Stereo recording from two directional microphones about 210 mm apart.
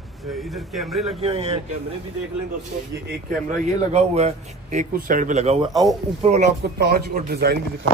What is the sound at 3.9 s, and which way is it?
Speech, 30° right (ahead or behind).